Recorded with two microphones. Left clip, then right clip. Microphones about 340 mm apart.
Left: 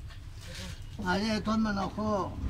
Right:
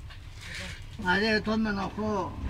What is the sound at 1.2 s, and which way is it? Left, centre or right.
Speech, centre.